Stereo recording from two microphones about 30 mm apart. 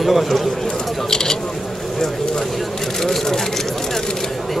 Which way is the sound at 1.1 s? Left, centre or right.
Centre.